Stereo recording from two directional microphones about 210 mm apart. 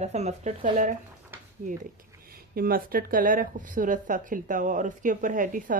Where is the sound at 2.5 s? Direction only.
45° right (ahead or behind).